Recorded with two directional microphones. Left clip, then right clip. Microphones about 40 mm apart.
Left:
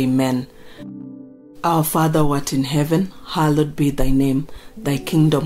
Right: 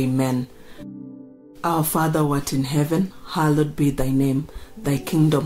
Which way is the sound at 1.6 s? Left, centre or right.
Left.